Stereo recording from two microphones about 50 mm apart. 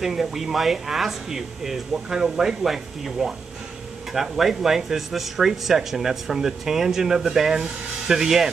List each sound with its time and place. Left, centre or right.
0.0 s speech: centre